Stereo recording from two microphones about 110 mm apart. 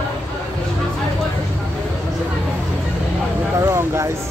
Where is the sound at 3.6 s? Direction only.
25° right (ahead or behind).